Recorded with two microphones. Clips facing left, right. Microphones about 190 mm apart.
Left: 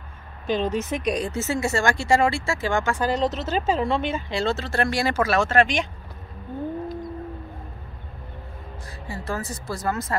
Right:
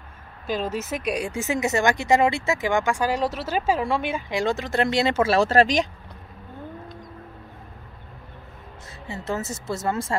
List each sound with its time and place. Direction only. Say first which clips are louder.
0.5 s speech: left 3 dB; 5° right (ahead or behind); by 5.9 s 35° right (ahead or behind)
9.0 s speech: right 2 dB; 20° right (ahead or behind)